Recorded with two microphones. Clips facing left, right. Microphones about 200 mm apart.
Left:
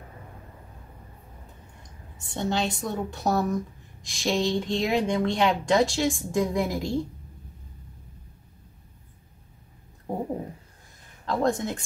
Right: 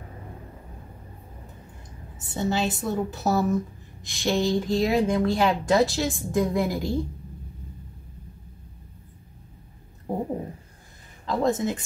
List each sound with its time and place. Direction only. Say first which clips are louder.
2.1 s a woman's voice: right 1 dB; 5° right (ahead or behind)
10.1 s a sound: right 2 dB; 5° right (ahead or behind)
11.2 s a woman's voice: right 1 dB; centre (ahead or behind)